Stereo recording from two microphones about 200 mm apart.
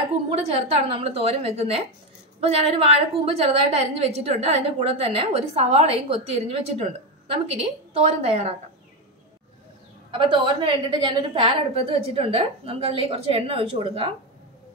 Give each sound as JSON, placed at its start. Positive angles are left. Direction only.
{"t": 0.3, "sound": "a woman's voice", "side_deg": -30}
{"t": 10.1, "sound": "a woman's voice", "side_deg": -25}